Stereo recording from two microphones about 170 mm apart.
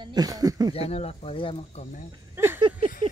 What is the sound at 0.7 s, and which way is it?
Speech, 35° left (ahead or behind).